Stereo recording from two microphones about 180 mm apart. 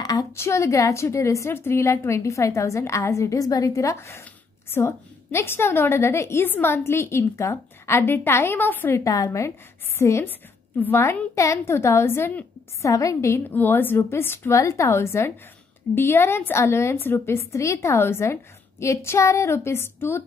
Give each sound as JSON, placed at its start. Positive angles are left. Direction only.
{"t": 0.0, "sound": "a woman's voice", "side_deg": 20}